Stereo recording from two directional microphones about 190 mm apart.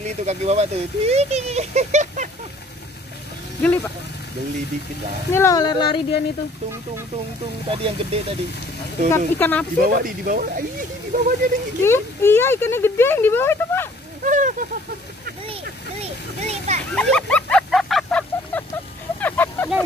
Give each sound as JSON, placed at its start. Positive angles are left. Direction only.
{"t": 0.0, "sound": "speech", "side_deg": -35}
{"t": 3.6, "sound": "speech", "side_deg": 10}
{"t": 5.3, "sound": "speech", "side_deg": 15}
{"t": 7.7, "sound": "speech", "side_deg": -30}
{"t": 9.1, "sound": "speech", "side_deg": 10}
{"t": 9.8, "sound": "speech", "side_deg": -45}
{"t": 11.8, "sound": "speech", "side_deg": 15}
{"t": 14.2, "sound": "a sound", "side_deg": -45}
{"t": 16.4, "sound": "speech", "side_deg": -35}
{"t": 16.9, "sound": "a sound", "side_deg": 5}